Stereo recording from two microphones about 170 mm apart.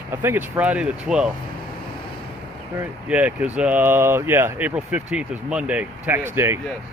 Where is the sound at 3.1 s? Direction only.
10° right (ahead or behind).